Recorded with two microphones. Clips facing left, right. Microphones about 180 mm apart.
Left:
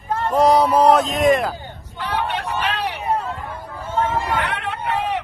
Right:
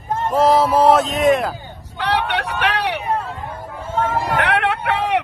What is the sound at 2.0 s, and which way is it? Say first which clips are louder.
Hubbub: right 3 dB; 75° right (ahead or behind).